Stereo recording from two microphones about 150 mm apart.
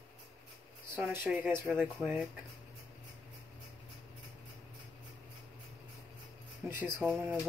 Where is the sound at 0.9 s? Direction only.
15° right (ahead or behind).